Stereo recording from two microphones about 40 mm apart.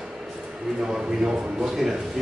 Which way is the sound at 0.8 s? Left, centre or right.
Centre.